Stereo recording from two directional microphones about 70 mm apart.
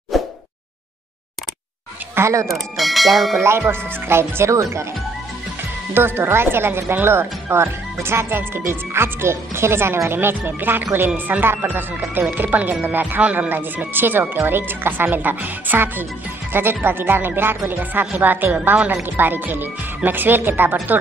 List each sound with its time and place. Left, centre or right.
0.1 s a sound: centre
2.1 s speech: right
2.4 s speech: centre
3.3 s speech: right
5.9 s speech: right